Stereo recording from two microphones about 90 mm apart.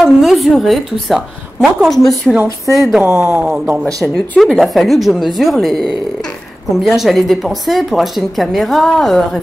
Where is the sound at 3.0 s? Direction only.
30° right (ahead or behind).